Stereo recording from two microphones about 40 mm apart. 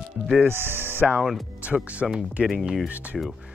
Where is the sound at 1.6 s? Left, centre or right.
Right.